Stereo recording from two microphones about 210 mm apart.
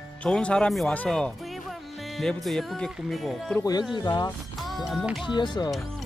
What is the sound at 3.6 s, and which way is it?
Speech, 20° left (ahead or behind).